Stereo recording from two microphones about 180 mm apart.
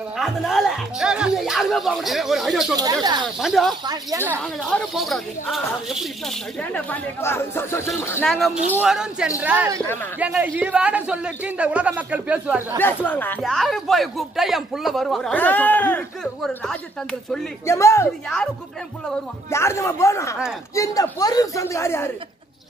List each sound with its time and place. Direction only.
0.2 s speech: centre (ahead or behind)
2.7 s speech: 20° right (ahead or behind)
3.3 s speech: centre (ahead or behind)
3.8 s speech: 20° right (ahead or behind)
4.6 s speech: centre (ahead or behind)
6.7 s speech: 10° left (ahead or behind)
8.3 s a man's voice: centre (ahead or behind)
12.7 s speech: 10° left (ahead or behind)
17.6 s speech: 15° left (ahead or behind)
19.5 s speech: 15° left (ahead or behind)